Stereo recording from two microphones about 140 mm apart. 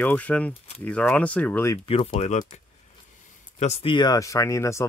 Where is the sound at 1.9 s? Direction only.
40° left (ahead or behind).